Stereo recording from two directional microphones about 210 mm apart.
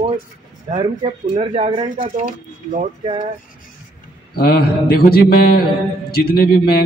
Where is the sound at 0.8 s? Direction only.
30° right (ahead or behind).